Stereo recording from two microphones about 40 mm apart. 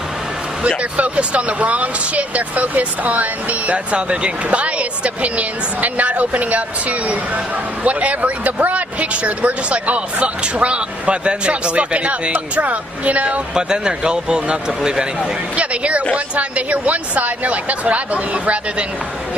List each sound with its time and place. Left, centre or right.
0.9 s speech: right
13.6 s a man's voice: right
15.5 s speech: right